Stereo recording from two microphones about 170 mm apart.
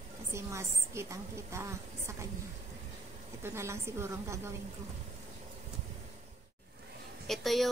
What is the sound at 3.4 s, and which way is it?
Speech, 15° right (ahead or behind).